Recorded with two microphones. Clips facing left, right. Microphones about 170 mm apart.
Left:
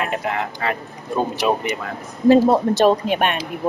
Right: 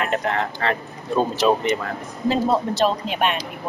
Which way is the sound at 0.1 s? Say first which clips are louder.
Right 1 dB; 10° left (ahead or behind).